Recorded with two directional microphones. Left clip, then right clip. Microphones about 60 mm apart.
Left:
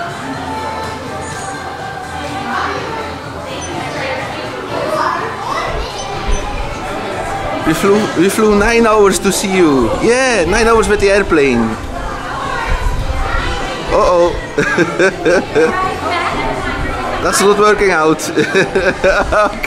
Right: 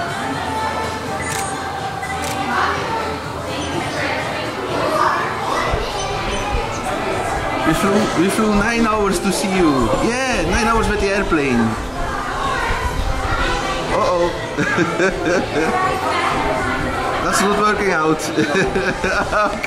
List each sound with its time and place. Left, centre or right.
7.8 s speech: left
13.9 s a sound: right
14.6 s speech: left
17.2 s speech: left